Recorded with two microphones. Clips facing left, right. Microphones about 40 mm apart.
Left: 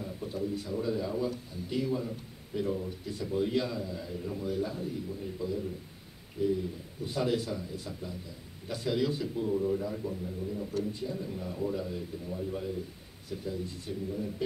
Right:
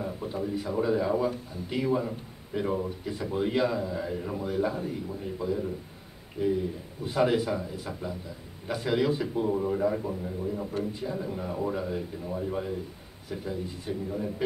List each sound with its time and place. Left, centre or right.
0.0 s a man's voice: right
9.5 s a man's voice: right
9.8 s a man's voice: right
10.9 s a man's voice: centre
13.3 s speech: right